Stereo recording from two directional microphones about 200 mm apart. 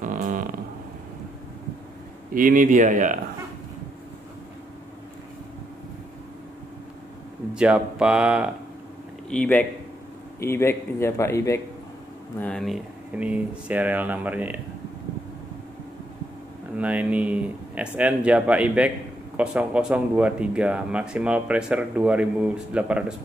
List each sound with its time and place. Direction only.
0.0 s a sound: 40° right (ahead or behind)
2.3 s speech: 45° right (ahead or behind)
7.5 s speech: 5° right (ahead or behind)
9.3 s a man's voice: 5° left (ahead or behind)
16.7 s speech: 5° right (ahead or behind)